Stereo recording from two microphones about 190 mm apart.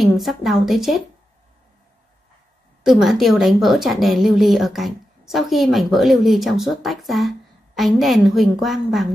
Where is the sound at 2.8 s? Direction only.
Centre (ahead or behind).